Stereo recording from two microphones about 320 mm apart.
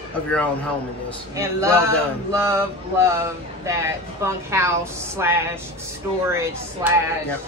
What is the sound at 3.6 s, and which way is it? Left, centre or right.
A woman's voice, centre.